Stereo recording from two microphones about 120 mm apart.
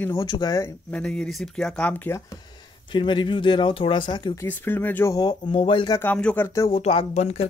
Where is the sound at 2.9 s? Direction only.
40° left (ahead or behind).